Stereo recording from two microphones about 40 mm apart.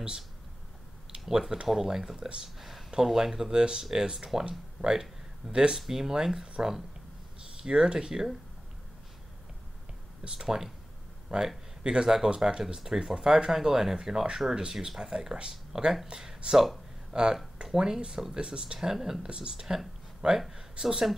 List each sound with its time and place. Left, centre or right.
1.4 s speech: centre
3.5 s speech: centre
10.2 s speech: centre
17.1 s speech: centre
19.2 s speech: right